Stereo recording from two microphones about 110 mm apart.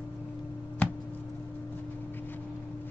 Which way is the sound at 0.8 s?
15° left (ahead or behind).